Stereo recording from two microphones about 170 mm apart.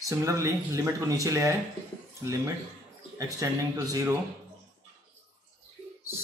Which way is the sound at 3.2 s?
20° right (ahead or behind).